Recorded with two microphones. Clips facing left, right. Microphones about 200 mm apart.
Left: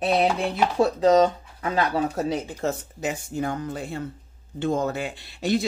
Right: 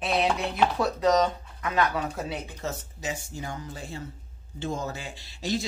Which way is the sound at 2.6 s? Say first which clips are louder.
Left 5 dB; 55° left (ahead or behind).